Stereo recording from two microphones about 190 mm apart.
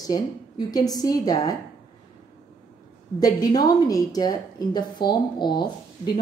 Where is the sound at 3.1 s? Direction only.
20° left (ahead or behind).